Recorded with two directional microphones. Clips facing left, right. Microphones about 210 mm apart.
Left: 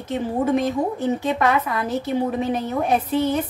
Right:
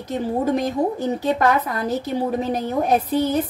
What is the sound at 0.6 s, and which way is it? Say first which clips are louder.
A woman's voice: even; 40° right (ahead or behind).